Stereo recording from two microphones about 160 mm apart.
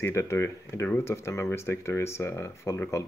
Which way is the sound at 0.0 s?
15° left (ahead or behind).